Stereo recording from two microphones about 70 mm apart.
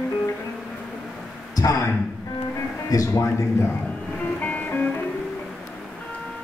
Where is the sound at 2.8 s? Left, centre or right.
Left.